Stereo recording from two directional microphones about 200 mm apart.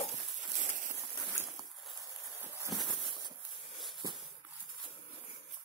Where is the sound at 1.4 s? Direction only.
15° right (ahead or behind).